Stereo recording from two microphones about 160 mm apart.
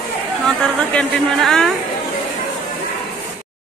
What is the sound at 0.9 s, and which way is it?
Speech, 5° left (ahead or behind).